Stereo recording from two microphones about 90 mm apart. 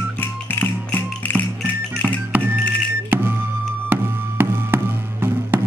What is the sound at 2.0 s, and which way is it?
Music, 20° right (ahead or behind).